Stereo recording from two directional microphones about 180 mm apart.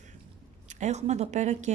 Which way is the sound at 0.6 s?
40° right (ahead or behind).